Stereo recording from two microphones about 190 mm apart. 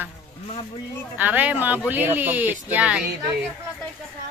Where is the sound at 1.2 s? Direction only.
10° right (ahead or behind).